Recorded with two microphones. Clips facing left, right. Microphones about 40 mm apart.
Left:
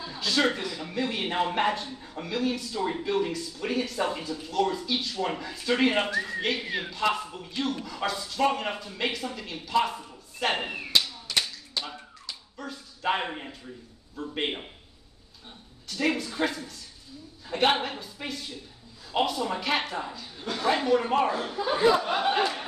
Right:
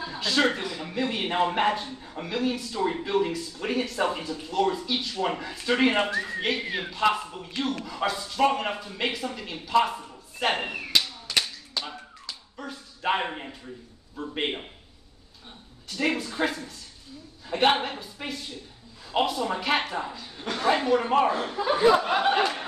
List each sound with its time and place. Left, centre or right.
0.0 s speech: centre
12.5 s a man's voice: centre
15.9 s speech: centre
21.9 s speech: right